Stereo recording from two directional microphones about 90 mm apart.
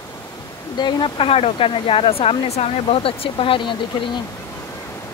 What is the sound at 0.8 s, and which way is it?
Speech, 55° left (ahead or behind).